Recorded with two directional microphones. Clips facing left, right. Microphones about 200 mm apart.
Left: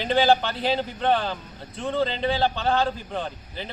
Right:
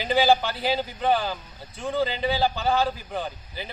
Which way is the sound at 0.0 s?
5° right (ahead or behind).